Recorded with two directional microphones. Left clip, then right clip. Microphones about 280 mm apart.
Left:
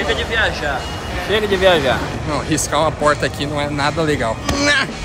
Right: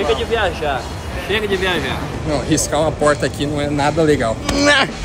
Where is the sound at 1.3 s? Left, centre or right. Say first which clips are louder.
Left 4 dB; centre.